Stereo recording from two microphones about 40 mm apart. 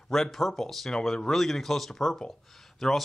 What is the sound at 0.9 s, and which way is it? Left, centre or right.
Speech, centre.